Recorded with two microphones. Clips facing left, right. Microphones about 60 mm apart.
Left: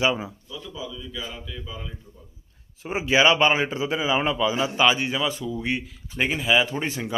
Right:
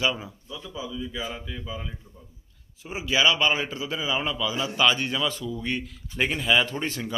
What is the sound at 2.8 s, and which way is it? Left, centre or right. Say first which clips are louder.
A man's voice: left 4 dB; left.